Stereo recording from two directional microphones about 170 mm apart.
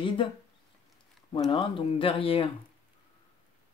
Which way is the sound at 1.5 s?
30° left (ahead or behind).